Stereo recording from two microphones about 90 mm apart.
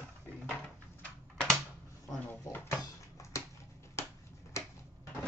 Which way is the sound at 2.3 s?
25° left (ahead or behind).